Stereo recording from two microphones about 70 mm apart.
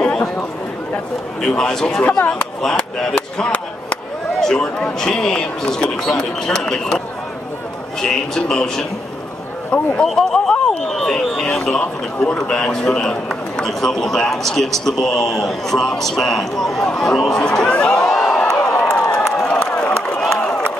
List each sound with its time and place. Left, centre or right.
0.0 s a sound: centre
1.5 s speech: centre
2.0 s a man's voice: centre
2.6 s speech: centre
3.2 s a sound: centre
4.4 s speech: centre
8.0 s speech: centre
10.0 s speech: centre
11.8 s a man's voice: left
19.7 s a sound: centre